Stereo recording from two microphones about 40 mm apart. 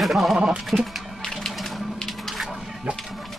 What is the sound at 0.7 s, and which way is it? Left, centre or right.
Speech, right.